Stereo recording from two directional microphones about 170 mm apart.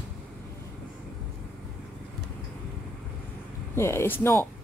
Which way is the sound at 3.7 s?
15° left (ahead or behind).